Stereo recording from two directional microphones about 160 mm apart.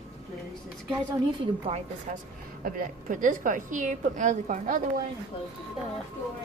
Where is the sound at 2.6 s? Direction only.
60° right (ahead or behind).